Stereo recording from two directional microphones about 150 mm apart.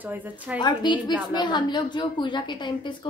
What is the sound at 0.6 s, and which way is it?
A woman's voice, 30° left (ahead or behind).